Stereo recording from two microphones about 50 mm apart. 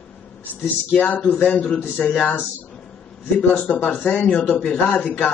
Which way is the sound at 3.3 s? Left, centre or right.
Left.